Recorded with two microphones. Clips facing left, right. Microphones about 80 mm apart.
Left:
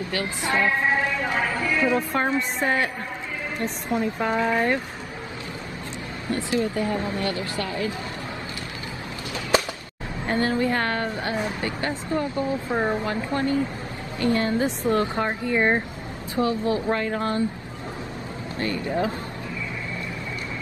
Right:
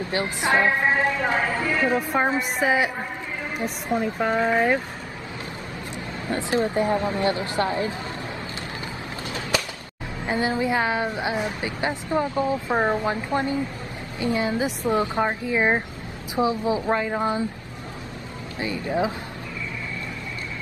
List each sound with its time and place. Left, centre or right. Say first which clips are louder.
0.1 s speech: right 4 dB; right
1.0 s speech: right 2 dB; right
2.6 s speech: right 3 dB; centre
3.9 s speech: right 1 dB; centre
6.5 s speech: right 3 dB; right
9.5 s music: left 5 dB; left
10.2 s speech: left 1 dB; centre
18.6 s speech: right 1 dB; centre